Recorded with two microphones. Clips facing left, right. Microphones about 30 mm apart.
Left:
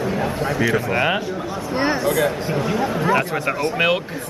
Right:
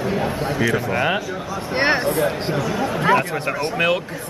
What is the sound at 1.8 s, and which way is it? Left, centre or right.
Speech, right.